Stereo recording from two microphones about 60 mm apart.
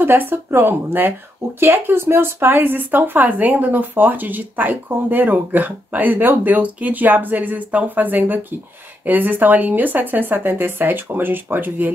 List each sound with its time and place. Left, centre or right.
0.0 s a woman's voice: right